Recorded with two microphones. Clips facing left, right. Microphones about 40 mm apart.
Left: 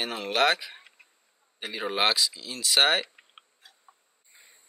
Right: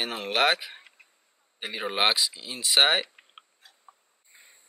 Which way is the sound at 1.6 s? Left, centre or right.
Centre.